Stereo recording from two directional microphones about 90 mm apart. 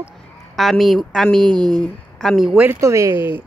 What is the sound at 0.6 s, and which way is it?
A woman's voice, centre (ahead or behind).